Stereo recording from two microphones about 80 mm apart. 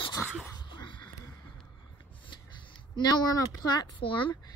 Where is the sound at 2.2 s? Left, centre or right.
Left.